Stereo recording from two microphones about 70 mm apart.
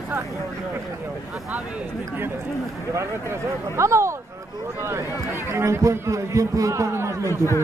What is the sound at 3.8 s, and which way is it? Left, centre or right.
A man's voice, right.